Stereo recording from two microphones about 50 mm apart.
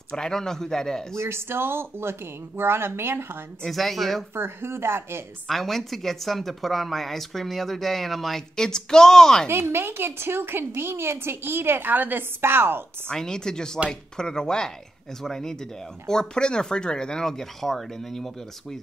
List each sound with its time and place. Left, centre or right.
0.1 s speech: centre
1.1 s a woman's voice: right
3.6 s speech: centre
4.4 s speech: right
5.5 s speech: centre
9.5 s a woman's voice: right
13.1 s speech: centre